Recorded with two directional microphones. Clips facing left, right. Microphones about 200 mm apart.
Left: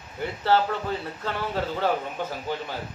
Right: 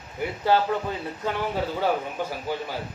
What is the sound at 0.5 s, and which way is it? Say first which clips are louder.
Speech: even; 15° right (ahead or behind).